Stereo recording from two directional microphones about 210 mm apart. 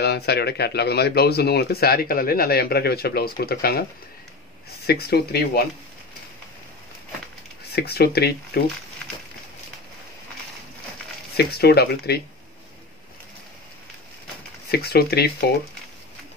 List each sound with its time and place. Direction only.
0.0 s speech: 50° left (ahead or behind)
4.8 s speech: 50° left (ahead or behind)
7.7 s speech: 50° left (ahead or behind)
11.3 s speech: 50° left (ahead or behind)
14.7 s speech: 50° left (ahead or behind)